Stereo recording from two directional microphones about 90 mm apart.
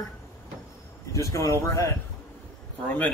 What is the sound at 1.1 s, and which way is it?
Speech, 35° left (ahead or behind).